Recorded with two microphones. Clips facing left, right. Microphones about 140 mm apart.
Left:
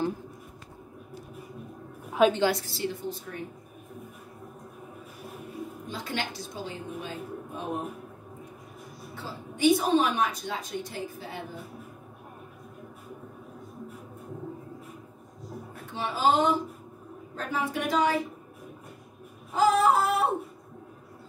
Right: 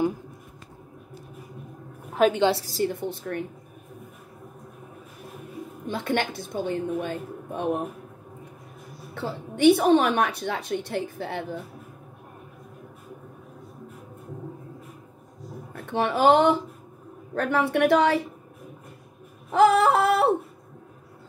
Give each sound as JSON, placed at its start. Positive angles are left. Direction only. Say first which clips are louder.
{"t": 2.5, "sound": "a woman's voice", "louder": "right 5 dB", "side_deg": -40}
{"t": 5.9, "sound": "a woman's voice", "louder": "right 9 dB", "side_deg": -60}
{"t": 9.1, "sound": "a woman's voice", "louder": "right 9 dB", "side_deg": -65}
{"t": 15.7, "sound": "a woman's voice", "louder": "right 9 dB", "side_deg": -60}
{"t": 19.5, "sound": "a sound", "louder": "right 4 dB", "side_deg": -65}